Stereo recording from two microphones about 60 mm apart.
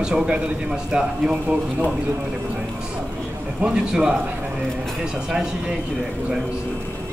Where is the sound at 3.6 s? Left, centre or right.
Centre.